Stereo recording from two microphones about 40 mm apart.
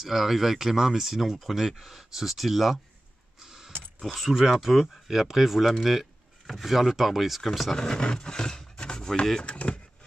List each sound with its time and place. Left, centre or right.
0.0 s speech: centre
3.3 s a sound: centre
4.0 s speech: centre
7.7 s speech: centre
9.4 s speech: left